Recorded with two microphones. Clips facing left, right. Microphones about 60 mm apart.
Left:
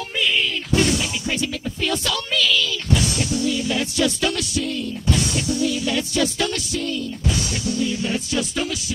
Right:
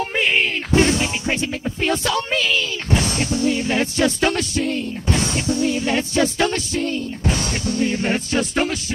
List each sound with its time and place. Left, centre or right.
0.2 s music: right